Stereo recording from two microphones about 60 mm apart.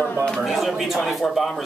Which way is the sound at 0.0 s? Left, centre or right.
Centre.